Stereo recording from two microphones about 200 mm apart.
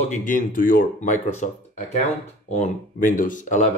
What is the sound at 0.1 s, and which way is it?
A man's voice, 40° left (ahead or behind).